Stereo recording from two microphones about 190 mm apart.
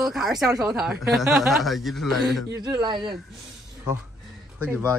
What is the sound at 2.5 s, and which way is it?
Speech, 20° right (ahead or behind).